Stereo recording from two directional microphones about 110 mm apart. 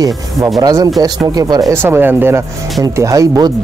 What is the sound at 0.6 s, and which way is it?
Speech, 35° right (ahead or behind).